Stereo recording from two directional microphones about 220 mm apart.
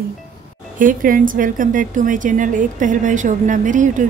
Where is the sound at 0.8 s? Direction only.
40° right (ahead or behind).